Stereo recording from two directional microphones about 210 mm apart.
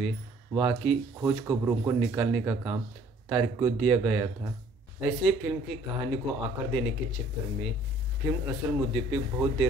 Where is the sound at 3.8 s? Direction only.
5° right (ahead or behind).